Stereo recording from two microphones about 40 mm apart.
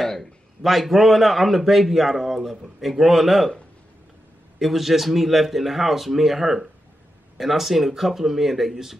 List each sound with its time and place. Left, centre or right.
0.2 s a man's voice: centre
4.6 s a man's voice: centre